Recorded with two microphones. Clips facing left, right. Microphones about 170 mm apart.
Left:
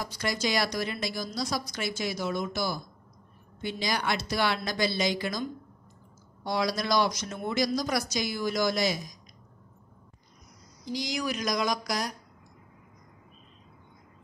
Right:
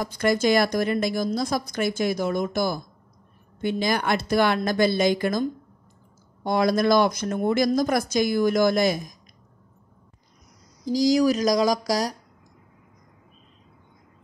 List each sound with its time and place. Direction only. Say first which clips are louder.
0.0 s a woman's voice: right 9 dB; 50° right (ahead or behind)
10.9 s speech: right 12 dB; 40° right (ahead or behind)